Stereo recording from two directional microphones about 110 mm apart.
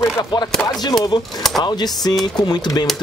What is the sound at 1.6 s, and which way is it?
Speech, 40° left (ahead or behind).